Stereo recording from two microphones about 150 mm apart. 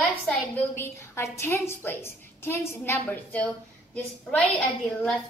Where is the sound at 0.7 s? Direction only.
15° left (ahead or behind).